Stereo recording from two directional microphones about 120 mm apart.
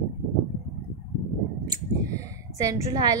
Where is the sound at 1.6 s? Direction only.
30° right (ahead or behind).